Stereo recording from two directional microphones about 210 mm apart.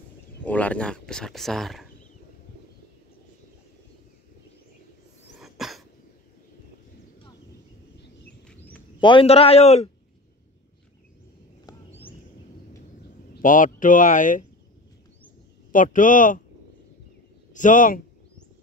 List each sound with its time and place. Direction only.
0.4 s speech: 5° left (ahead or behind)
5.3 s cough: centre (ahead or behind)
8.5 s a sound: 5° left (ahead or behind)
9.0 s a man's voice: 25° left (ahead or behind)
13.3 s speech: 40° left (ahead or behind)
15.7 s speech: 40° left (ahead or behind)
17.5 s speech: 35° left (ahead or behind)